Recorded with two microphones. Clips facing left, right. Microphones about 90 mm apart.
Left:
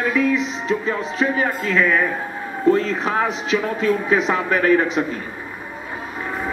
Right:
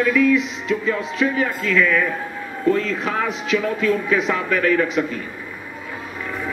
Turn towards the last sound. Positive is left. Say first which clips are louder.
# left 2 dB
turn(degrees=30)  # may be behind; listen again after turning